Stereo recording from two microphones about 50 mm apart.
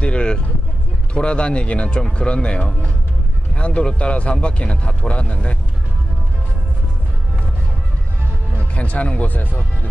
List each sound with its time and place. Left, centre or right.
0.0 s vehicle: left
1.1 s a man's voice: left
8.7 s a man's voice: left